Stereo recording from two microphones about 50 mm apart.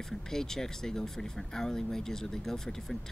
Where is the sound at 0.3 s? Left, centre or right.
Centre.